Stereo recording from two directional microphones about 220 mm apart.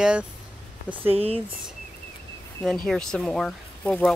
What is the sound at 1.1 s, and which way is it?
Speech, 25° right (ahead or behind).